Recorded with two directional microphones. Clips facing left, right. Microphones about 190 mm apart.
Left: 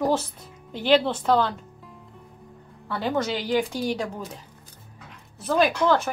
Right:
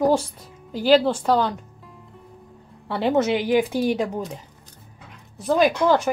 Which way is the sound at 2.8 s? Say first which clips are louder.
Right 5 dB; 25° right (ahead or behind).